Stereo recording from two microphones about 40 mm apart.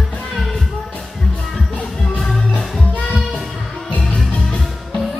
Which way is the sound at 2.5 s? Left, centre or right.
Left.